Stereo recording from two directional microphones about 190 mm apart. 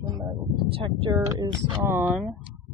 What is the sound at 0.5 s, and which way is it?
Speech, 30° right (ahead or behind).